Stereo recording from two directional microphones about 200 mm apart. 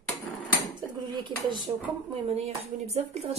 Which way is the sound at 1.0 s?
25° right (ahead or behind).